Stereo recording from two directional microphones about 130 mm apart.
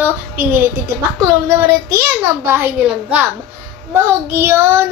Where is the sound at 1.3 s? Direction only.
20° right (ahead or behind).